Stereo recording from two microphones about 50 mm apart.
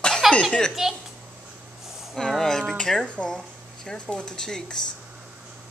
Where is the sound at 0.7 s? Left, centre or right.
Centre.